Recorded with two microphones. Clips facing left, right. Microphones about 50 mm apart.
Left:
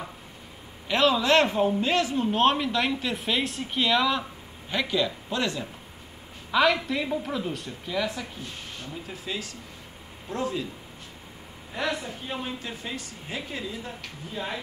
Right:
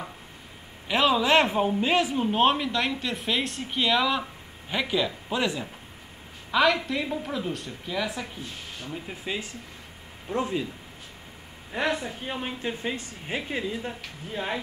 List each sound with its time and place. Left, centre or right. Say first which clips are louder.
0.8 s a man's voice: even; centre
2.4 s speech: left 1 dB; centre
6.5 s speech: even; centre
9.0 s speech: right 1 dB; right
11.7 s speech: right 2 dB; right